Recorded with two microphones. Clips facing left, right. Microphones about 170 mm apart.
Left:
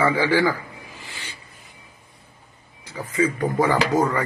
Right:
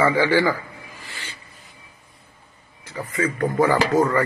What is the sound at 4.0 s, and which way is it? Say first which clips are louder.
Speech: right 2 dB; 20° left (ahead or behind).